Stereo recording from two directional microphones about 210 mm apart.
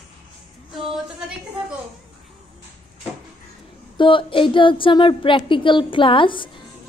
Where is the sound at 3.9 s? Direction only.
25° left (ahead or behind).